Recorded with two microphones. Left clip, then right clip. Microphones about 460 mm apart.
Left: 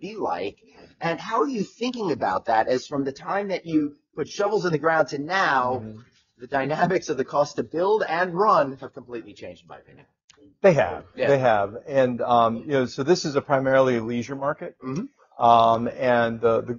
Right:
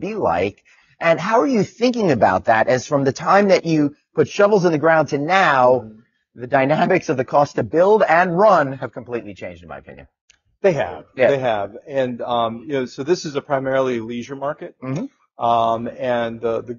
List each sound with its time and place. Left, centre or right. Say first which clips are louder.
0.0 s speech: right 9 dB; right
4.2 s a man's voice: right 9 dB; right
10.6 s speech: even; left
15.3 s speech: left 1 dB; left